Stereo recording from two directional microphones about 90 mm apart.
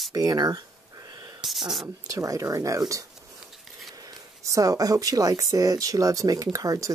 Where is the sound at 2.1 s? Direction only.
40° right (ahead or behind).